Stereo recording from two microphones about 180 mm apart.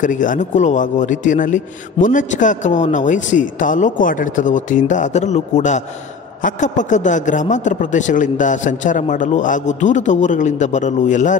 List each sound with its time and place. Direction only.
0.0 s a man's voice: 45° left (ahead or behind)